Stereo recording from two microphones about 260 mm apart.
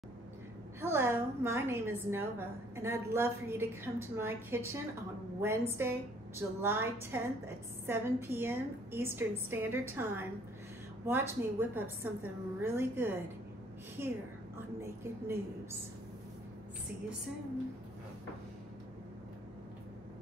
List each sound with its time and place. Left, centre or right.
0.7 s a woman's voice: centre